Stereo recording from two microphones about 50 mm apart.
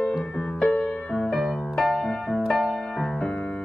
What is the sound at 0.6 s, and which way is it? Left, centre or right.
Music, left.